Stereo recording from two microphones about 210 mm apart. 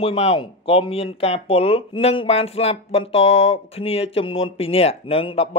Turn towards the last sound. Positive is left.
turn(degrees=25)  # may be behind; listen again after turning